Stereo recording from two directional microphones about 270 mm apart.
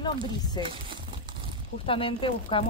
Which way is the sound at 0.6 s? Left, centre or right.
Centre.